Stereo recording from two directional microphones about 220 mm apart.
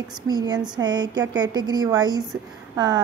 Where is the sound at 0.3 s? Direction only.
20° right (ahead or behind).